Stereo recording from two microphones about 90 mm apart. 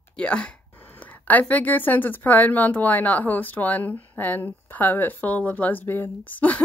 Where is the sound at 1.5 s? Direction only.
20° left (ahead or behind).